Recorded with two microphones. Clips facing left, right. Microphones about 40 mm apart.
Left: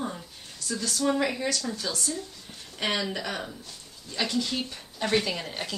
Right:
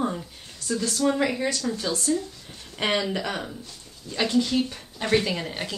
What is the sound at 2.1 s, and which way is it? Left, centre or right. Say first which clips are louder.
Speech: right 8 dB; centre.